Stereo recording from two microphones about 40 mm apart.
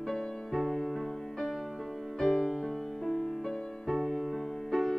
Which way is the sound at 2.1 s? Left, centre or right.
Centre.